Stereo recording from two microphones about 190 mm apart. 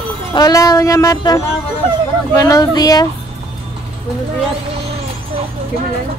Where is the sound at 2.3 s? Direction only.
15° left (ahead or behind).